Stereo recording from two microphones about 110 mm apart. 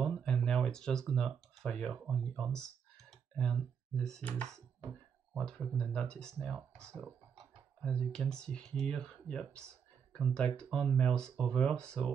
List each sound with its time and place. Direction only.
0.0 s a sound: 5° left (ahead or behind)
1.6 s speech: 5° left (ahead or behind)
5.8 s speech: 10° left (ahead or behind)
6.9 s speech: 15° right (ahead or behind)
7.8 s speech: 10° left (ahead or behind)